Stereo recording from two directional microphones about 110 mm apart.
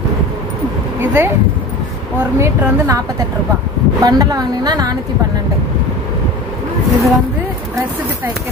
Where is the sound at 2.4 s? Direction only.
30° right (ahead or behind).